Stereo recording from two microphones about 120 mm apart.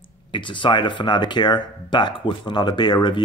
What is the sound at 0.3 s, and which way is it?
Speech, 40° left (ahead or behind).